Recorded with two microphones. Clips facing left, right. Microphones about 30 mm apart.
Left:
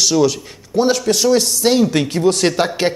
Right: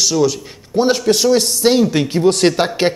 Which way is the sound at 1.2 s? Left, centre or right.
Centre.